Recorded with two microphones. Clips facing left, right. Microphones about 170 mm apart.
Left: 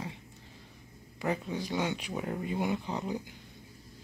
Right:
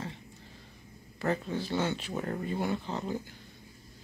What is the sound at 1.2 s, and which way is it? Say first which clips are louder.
Speech: right 1 dB; 10° left (ahead or behind).